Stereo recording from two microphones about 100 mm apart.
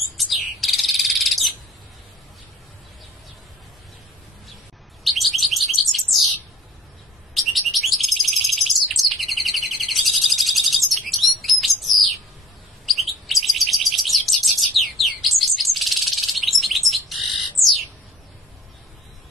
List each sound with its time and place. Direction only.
0.2 s bird: centre (ahead or behind)
5.0 s bird: centre (ahead or behind)
7.3 s bird: centre (ahead or behind)
12.9 s chirp: centre (ahead or behind)
13.3 s bird: centre (ahead or behind)